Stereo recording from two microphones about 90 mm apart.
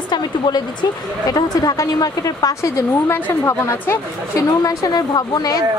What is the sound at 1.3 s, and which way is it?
A woman's voice, 45° left (ahead or behind).